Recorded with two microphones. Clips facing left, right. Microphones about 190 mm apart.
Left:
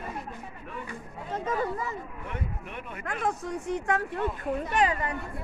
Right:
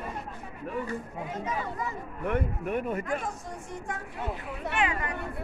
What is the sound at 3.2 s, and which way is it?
A woman's voice, 70° left (ahead or behind).